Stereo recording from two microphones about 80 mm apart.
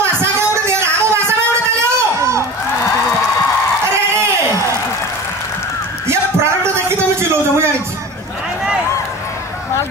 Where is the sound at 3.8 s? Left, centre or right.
Right.